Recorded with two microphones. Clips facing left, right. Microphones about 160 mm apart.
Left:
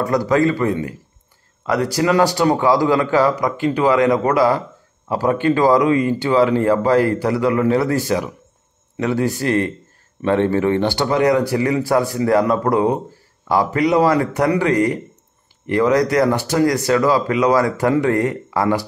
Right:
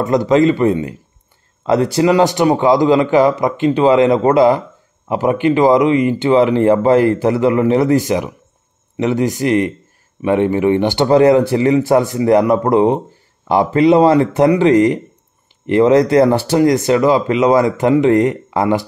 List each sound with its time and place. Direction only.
0.0 s speech: 20° right (ahead or behind)
11.1 s speech: 30° right (ahead or behind)